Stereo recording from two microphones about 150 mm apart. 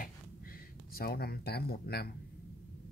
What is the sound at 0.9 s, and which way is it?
Speech, 90° left.